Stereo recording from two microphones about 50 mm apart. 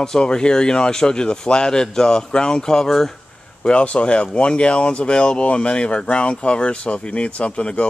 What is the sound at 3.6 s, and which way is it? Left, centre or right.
Speech, left.